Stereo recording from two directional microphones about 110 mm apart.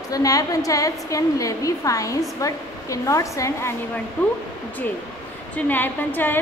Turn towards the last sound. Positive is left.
turn(degrees=15)  # may be behind; listen again after turning